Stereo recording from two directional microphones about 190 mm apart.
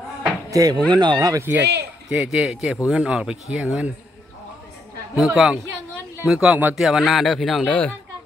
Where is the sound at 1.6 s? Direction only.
60° right (ahead or behind).